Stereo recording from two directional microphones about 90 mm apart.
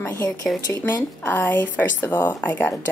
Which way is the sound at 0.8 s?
20° left (ahead or behind).